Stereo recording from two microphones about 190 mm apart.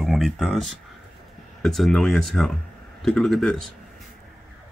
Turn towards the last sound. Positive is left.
turn(degrees=5)  # may be behind; listen again after turning